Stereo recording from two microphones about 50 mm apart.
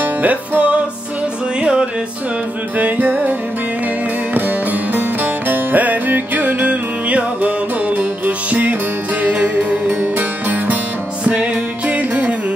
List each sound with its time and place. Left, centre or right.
0.0 s music: right
1.6 s music: centre
2.8 s music: right